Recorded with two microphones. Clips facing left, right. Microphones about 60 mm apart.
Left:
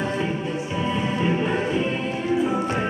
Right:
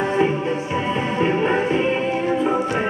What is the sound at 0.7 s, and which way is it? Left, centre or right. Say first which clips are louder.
Music: right 2 dB; right.